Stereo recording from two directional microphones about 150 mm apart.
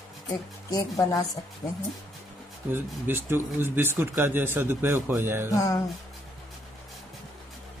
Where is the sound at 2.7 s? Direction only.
15° right (ahead or behind).